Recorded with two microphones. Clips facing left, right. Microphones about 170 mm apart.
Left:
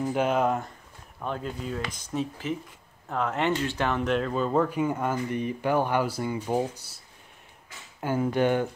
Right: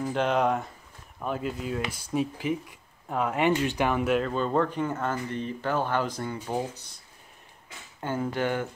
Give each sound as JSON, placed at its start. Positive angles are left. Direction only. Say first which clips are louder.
{"t": 0.0, "sound": "speech", "louder": "left 1 dB", "side_deg": 10}
{"t": 4.3, "sound": "speech", "louder": "left 1 dB", "side_deg": 5}
{"t": 8.0, "sound": "speech", "louder": "left 4 dB", "side_deg": 10}